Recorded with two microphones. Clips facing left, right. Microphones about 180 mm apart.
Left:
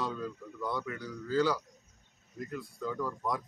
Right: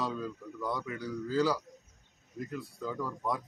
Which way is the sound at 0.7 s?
10° right (ahead or behind).